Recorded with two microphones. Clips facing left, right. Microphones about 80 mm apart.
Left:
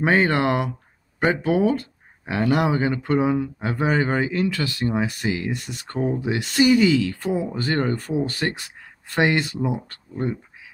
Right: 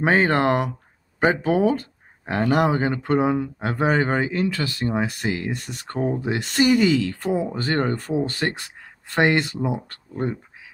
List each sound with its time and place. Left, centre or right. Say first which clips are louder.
0.0 s speech: right 1 dB; right
5.2 s speech: left 1 dB; right
5.9 s speech: even; right